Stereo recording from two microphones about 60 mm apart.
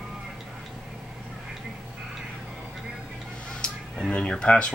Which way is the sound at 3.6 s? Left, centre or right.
Centre.